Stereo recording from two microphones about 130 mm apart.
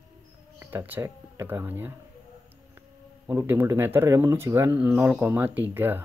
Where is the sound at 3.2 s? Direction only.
15° right (ahead or behind).